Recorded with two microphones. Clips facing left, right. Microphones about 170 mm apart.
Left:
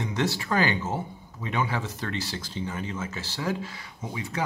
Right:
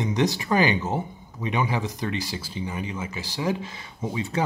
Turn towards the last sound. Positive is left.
turn(degrees=-25)  # may be behind; listen again after turning